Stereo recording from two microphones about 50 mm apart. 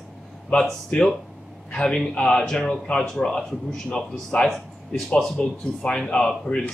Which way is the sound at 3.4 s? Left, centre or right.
Centre.